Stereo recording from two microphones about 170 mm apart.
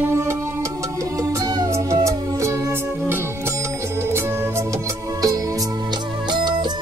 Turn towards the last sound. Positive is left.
turn(degrees=-25)  # may be behind; listen again after turning